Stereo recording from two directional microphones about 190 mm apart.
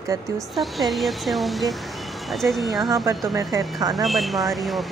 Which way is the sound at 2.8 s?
20° right (ahead or behind).